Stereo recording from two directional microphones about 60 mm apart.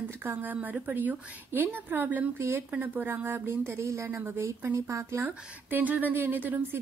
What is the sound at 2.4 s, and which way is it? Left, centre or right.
A woman's voice, right.